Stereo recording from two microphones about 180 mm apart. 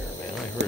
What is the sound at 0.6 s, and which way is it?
Hum, 80° right.